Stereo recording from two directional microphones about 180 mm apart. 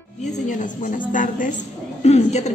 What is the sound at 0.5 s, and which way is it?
A woman's voice, 45° left (ahead or behind).